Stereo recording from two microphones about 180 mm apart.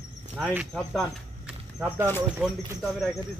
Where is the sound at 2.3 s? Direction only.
5° right (ahead or behind).